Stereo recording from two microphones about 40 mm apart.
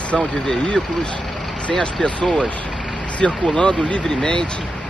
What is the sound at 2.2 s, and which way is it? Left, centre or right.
Speech, centre.